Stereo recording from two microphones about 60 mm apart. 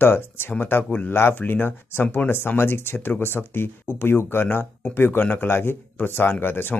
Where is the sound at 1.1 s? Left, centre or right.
Left.